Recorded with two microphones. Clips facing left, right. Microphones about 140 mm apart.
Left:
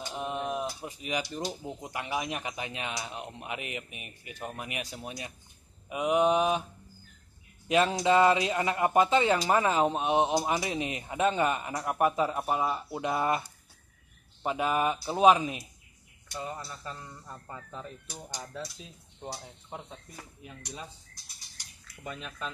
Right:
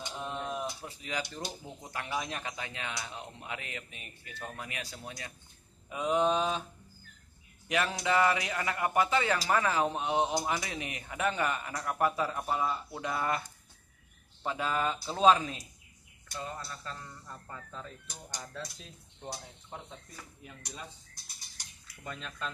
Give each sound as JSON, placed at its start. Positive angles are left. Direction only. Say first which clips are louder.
{"t": 0.1, "sound": "a sound", "louder": "left 5 dB", "side_deg": 15}
{"t": 0.7, "sound": "speech", "louder": "left 4 dB", "side_deg": 15}
{"t": 7.6, "sound": "speech", "louder": "left 6 dB", "side_deg": 25}
{"t": 18.5, "sound": "dishes", "louder": "left 3 dB", "side_deg": 5}
{"t": 19.7, "sound": "speech", "louder": "left 3 dB", "side_deg": 15}
{"t": 22.0, "sound": "speech", "louder": "left 2 dB", "side_deg": 5}